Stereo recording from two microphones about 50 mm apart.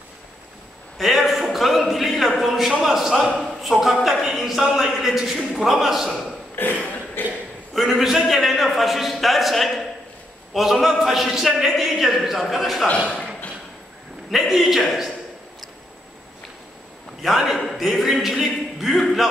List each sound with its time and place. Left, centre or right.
0.9 s a man's voice: centre
6.5 s a sound: left
7.7 s a man's voice: centre
14.3 s a man's voice: centre
17.2 s a man's voice: centre